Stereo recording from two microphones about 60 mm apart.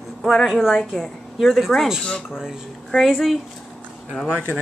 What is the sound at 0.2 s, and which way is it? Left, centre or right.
Speech, centre.